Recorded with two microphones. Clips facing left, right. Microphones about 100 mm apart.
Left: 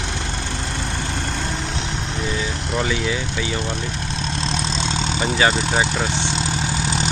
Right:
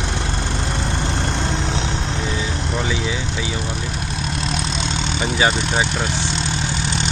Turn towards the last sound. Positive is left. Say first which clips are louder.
# even
turn(degrees=0)  # may be behind; listen again after turning